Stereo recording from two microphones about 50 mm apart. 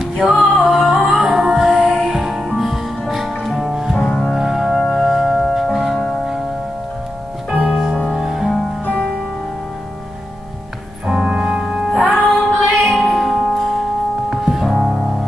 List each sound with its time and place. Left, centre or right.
0.0 s music: centre
0.7 s singing: centre
1.1 s music: centre
4.3 s organ: centre
4.8 s music: centre
7.5 s music: right
11.1 s organ: centre
11.9 s music: centre
14.3 s music: centre